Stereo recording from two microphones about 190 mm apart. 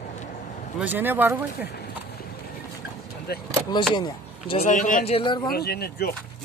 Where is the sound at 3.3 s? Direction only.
55° left (ahead or behind).